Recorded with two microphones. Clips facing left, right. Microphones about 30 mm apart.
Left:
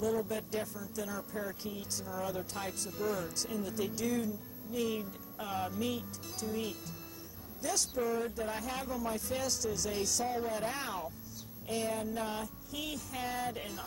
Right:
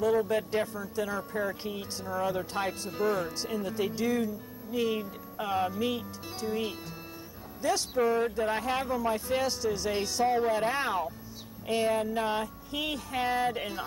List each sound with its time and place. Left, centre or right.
0.0 s speech: right